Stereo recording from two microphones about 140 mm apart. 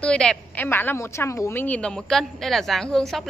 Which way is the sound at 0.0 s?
5° left (ahead or behind).